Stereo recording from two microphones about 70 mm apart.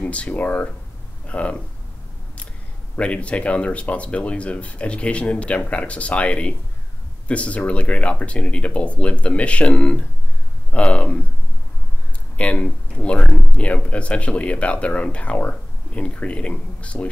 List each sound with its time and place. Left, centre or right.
0.0 s speech: centre
3.0 s speech: centre
12.4 s speech: centre